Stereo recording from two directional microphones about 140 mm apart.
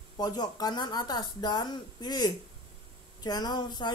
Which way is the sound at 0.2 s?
30° left (ahead or behind).